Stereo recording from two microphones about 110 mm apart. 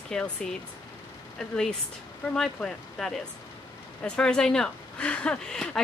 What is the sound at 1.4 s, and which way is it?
Speech, 5° left (ahead or behind).